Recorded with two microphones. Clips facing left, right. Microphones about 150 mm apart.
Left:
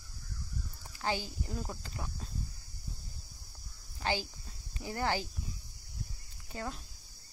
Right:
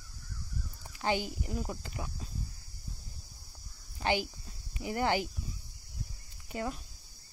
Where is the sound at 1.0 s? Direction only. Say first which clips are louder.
Right 3 dB; 20° right (ahead or behind).